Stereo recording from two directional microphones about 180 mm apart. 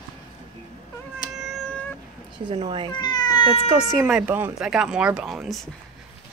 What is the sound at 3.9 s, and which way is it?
Speech, centre (ahead or behind).